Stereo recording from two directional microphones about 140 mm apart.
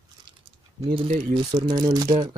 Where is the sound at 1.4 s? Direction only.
30° right (ahead or behind).